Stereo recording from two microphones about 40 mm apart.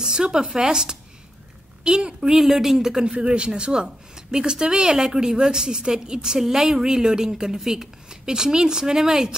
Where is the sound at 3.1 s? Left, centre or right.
Right.